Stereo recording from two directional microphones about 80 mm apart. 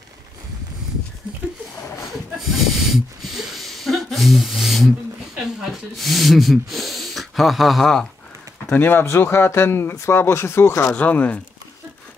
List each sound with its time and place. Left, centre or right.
2.3 s a sound: centre
5.6 s speech: centre
8.7 s speech: left
11.0 s speech: centre